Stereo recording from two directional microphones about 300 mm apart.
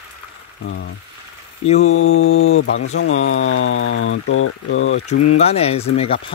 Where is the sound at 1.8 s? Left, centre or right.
Left.